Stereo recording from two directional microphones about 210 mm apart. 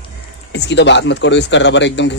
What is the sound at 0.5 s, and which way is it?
Speech, 55° left (ahead or behind).